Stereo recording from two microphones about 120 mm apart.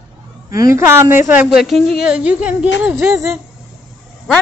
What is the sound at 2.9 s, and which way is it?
Speech, 25° right (ahead or behind).